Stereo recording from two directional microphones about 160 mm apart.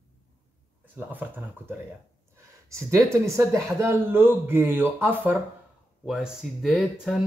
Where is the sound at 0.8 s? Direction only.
10° right (ahead or behind).